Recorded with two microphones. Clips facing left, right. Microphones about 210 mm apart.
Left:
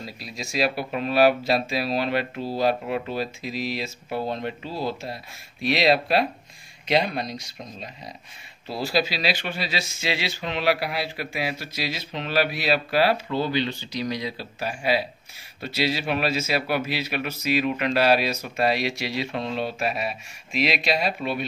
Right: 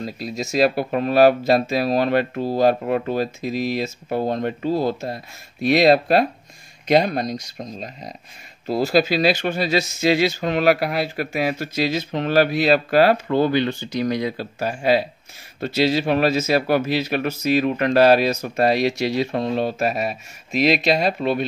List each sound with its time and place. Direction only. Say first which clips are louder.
0.0 s speech: right 9 dB; 45° right (ahead or behind)